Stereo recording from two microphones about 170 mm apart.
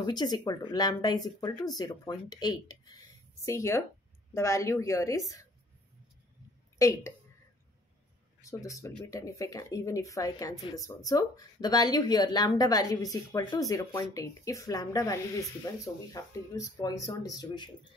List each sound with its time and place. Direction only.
0.0 s speech: 25° left (ahead or behind)
6.8 s speech: 15° left (ahead or behind)
8.4 s speech: 20° left (ahead or behind)